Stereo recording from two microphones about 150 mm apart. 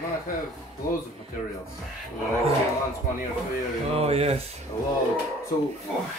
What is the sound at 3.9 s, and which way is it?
Speech, 40° right (ahead or behind).